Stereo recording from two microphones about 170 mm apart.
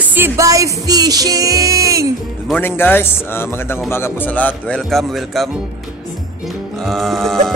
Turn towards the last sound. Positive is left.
turn(degrees=0)  # may be behind; listen again after turning